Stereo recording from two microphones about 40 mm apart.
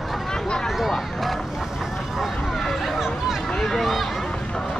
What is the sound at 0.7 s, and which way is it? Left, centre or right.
Run, centre.